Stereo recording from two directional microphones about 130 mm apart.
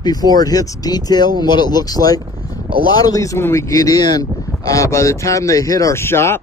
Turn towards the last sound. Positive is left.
turn(degrees=20)  # may be behind; listen again after turning